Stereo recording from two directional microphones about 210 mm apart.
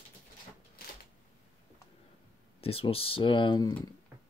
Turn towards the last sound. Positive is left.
turn(degrees=20)  # may be behind; listen again after turning